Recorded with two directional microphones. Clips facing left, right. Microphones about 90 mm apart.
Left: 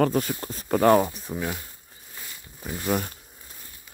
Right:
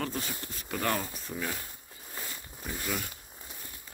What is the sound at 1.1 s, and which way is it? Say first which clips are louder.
Speech: left 5 dB; 15° left (ahead or behind).